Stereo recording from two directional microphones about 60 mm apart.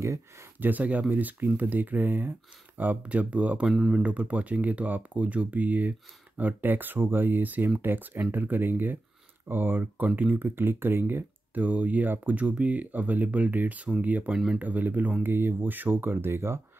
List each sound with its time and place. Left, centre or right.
0.6 s speech: right
14.3 s speech: centre
14.6 s speech: right